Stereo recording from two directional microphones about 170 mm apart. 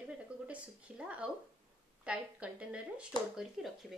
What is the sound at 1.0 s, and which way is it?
A woman's voice, 5° right (ahead or behind).